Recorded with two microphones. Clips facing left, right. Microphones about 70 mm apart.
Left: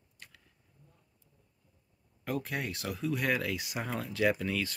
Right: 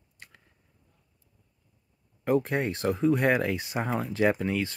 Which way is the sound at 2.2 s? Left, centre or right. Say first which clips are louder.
Right 9 dB; right.